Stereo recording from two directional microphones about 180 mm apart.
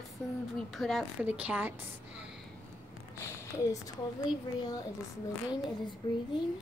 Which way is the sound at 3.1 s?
15° left (ahead or behind).